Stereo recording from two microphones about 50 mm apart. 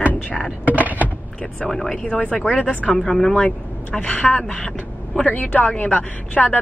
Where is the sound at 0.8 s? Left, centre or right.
Right.